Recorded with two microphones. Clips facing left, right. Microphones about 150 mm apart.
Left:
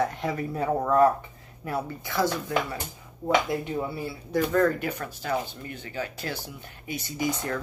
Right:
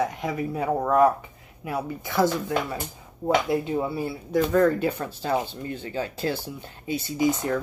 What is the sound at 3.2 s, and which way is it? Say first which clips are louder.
Speech: right 2 dB; 20° right (ahead or behind).